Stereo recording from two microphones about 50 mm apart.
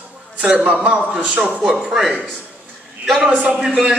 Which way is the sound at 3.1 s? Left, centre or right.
Centre.